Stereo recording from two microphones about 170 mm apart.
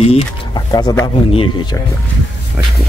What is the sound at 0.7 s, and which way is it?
Speech, 25° left (ahead or behind).